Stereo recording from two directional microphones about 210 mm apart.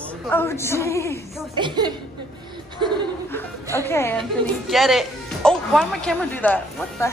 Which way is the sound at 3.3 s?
10° left (ahead or behind).